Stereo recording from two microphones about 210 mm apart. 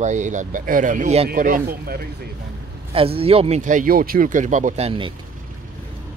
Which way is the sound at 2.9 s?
25° right (ahead or behind).